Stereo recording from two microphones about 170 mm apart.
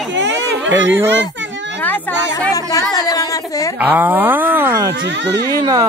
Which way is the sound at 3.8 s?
10° right (ahead or behind).